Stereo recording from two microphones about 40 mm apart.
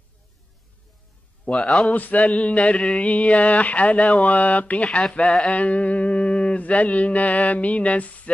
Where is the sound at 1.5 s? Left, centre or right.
Centre.